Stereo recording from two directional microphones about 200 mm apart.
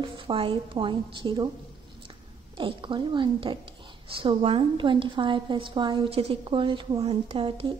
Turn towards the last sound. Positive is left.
turn(degrees=-25)  # may be behind; listen again after turning